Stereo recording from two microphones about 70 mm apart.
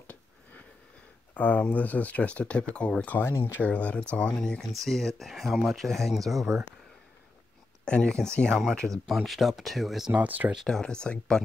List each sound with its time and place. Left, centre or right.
0.0 s sniff: left
1.3 s speech: left
3.1 s speech: left
3.3 s speech: left
3.6 s speech: left; by 6.6 s centre
7.8 s speech: centre
10.1 s speech: right
10.7 s speech: centre